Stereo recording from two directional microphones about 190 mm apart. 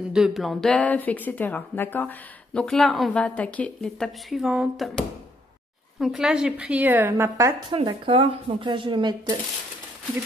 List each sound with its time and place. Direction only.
0.1 s a woman's voice: centre (ahead or behind)
7.7 s speech: 25° right (ahead or behind)